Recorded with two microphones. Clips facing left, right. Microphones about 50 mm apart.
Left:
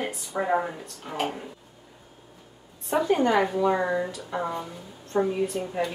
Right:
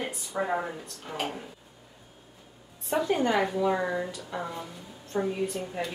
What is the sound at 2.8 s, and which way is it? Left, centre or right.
A woman's voice, centre.